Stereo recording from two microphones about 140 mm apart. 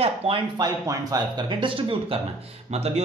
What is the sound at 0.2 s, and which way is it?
Speech, 45° right (ahead or behind).